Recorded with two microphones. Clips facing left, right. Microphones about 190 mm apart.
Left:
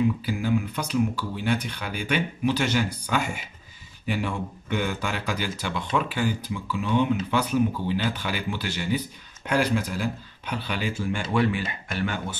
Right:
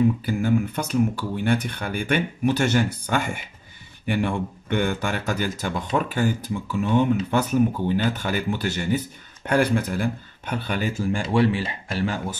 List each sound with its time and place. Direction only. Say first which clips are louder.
0.2 s speech: right 3 dB; 50° right (ahead or behind); by 12.4 s 35° right (ahead or behind)